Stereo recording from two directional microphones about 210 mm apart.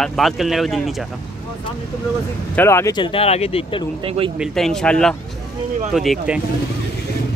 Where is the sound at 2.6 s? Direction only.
15° left (ahead or behind).